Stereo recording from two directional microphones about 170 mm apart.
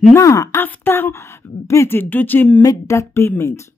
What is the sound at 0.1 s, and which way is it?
A woman's voice, 20° left (ahead or behind).